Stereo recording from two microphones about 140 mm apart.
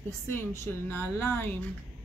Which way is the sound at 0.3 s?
20° left (ahead or behind).